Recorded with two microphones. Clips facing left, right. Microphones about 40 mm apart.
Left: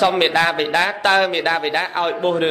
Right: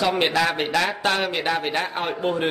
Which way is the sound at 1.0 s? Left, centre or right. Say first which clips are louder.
Left 7 dB; left.